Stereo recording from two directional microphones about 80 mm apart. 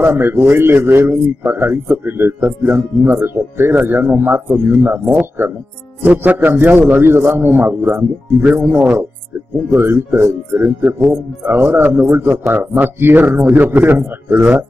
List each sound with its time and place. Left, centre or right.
0.0 s a man's voice: right